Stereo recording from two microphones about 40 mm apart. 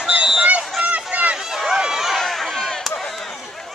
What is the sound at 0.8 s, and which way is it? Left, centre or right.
Run, right.